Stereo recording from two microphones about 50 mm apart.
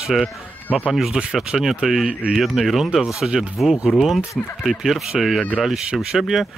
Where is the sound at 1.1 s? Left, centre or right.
Centre.